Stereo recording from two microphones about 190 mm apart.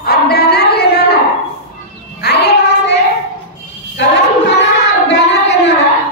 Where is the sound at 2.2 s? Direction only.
60° left (ahead or behind).